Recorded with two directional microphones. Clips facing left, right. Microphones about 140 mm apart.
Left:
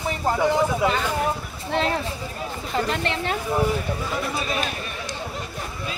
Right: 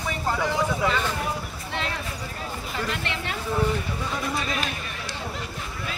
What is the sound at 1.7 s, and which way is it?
Speech, 35° left (ahead or behind).